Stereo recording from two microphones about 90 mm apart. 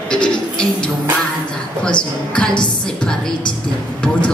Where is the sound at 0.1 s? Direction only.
10° left (ahead or behind).